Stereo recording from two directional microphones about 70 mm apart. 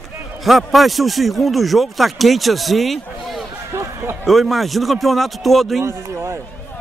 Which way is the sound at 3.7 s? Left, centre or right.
Right.